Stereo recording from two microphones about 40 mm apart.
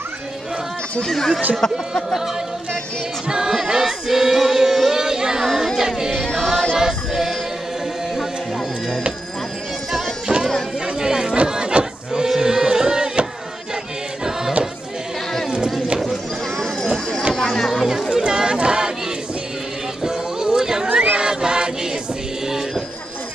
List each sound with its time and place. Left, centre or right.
1.0 s speech: centre
3.3 s choir: centre
5.8 s music: centre
6.7 s choir: centre
10.2 s music: right
11.0 s chatter: centre
11.4 s a sound: right
17.4 s a sound: centre
18.1 s chatter: right
20.0 s music: centre
20.9 s crowd: right
21.3 s choir: centre